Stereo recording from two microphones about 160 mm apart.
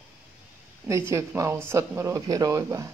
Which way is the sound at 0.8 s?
20° right (ahead or behind).